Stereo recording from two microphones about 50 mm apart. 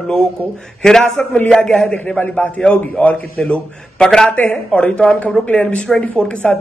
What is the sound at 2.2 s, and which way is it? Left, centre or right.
Speech, left.